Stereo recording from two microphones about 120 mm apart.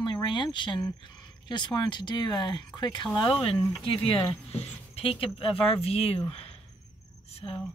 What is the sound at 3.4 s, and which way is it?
Speech, 50° left (ahead or behind).